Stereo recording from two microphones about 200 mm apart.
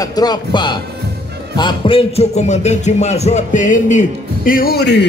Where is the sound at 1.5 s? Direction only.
25° left (ahead or behind).